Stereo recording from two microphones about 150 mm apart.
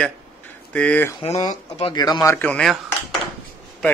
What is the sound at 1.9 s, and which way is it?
Speech, 25° left (ahead or behind).